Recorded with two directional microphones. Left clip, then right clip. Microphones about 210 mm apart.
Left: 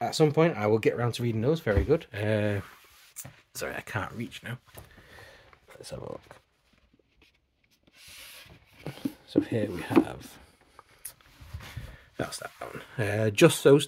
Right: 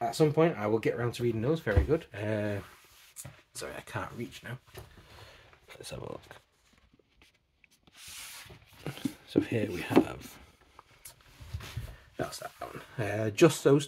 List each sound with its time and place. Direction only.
0.0 s speech: 45° left (ahead or behind)
5.9 s speech: 5° left (ahead or behind)
8.8 s a sound: centre (ahead or behind)
12.2 s speech: 40° left (ahead or behind)